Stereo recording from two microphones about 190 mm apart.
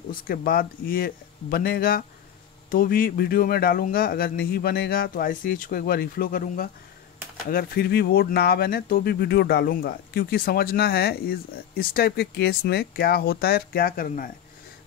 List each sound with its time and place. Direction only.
0.1 s speech: 50° left (ahead or behind)